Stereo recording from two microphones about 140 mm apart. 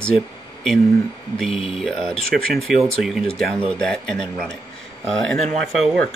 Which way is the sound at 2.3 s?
90° right.